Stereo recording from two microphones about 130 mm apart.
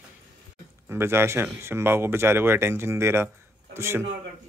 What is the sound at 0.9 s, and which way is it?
Speech, 20° right (ahead or behind).